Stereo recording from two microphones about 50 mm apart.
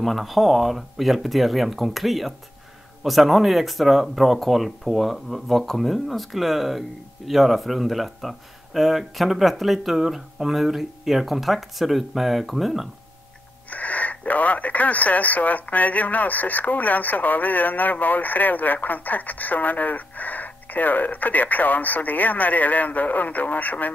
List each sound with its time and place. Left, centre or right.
0.0 s speech: centre
13.7 s speech: left